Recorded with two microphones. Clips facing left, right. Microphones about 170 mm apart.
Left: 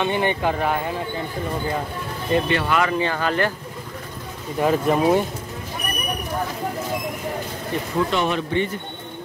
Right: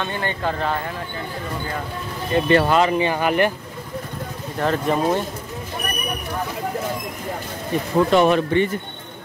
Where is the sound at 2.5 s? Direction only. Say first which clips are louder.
Right 6 dB; 40° right (ahead or behind).